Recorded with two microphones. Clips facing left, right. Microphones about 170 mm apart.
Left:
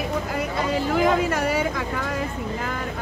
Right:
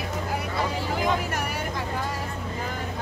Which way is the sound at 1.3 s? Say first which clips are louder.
Left 7 dB; 90° left.